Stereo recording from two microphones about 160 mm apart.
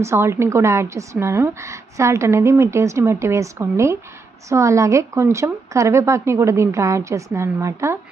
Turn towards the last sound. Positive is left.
turn(degrees=-20)  # may be behind; listen again after turning